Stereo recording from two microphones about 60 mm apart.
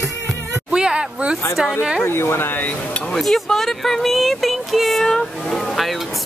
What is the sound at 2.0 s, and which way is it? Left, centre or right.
Speech, left.